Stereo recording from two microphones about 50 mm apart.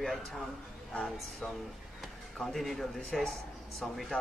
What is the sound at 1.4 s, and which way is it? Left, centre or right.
Speech, left.